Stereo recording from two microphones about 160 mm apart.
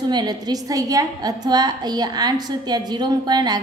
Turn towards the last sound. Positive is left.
turn(degrees=-25)  # may be behind; listen again after turning